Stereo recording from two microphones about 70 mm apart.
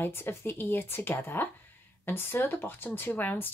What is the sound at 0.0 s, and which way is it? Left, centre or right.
Speech, left.